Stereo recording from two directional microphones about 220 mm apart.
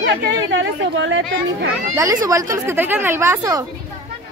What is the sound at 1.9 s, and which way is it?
A woman's voice, 15° right (ahead or behind).